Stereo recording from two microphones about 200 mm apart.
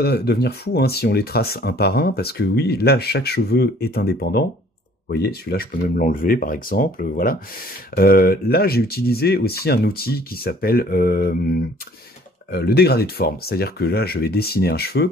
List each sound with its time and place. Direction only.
0.0 s speech: 55° left (ahead or behind)